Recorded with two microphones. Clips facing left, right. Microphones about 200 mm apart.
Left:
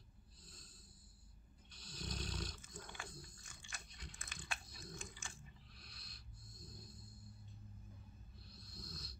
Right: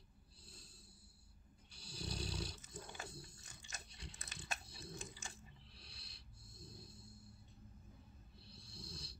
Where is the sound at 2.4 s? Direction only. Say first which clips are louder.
Right 2 dB; 30° right (ahead or behind).